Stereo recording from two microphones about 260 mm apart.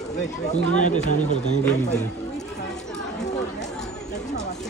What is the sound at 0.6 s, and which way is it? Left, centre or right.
Speech, left.